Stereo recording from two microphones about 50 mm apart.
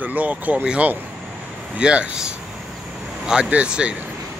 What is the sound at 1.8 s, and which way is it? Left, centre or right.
Speech, right.